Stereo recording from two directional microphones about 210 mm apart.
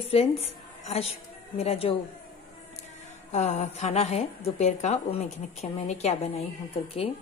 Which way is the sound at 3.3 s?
35° left (ahead or behind).